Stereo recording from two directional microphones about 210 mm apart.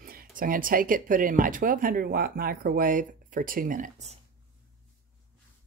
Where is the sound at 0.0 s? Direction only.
45° right (ahead or behind).